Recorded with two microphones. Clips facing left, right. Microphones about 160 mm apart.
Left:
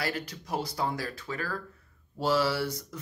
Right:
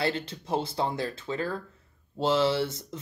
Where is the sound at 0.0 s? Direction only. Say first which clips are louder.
Right 4 dB; 25° right (ahead or behind).